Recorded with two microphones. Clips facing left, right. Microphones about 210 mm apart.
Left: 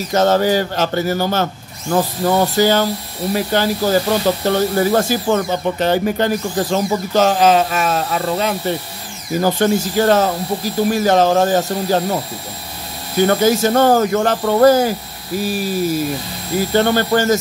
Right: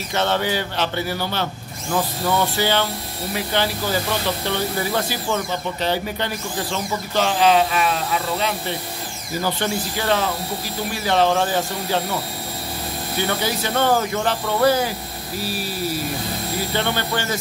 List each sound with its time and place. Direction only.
0.1 s speech: 40° left (ahead or behind)
13.2 s speech: 45° left (ahead or behind)
16.7 s speech: 45° left (ahead or behind)